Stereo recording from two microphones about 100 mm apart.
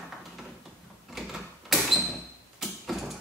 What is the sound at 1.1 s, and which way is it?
Door, centre (ahead or behind).